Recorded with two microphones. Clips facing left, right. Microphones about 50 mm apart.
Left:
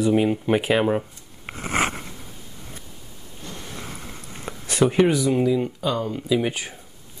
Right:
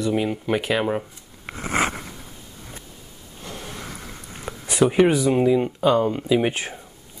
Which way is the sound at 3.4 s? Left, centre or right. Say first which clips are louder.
Right 1 dB; centre.